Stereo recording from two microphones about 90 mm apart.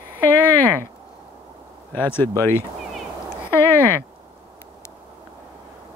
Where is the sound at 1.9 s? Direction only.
25° left (ahead or behind).